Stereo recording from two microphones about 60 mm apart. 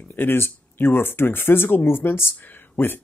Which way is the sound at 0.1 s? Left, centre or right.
Left.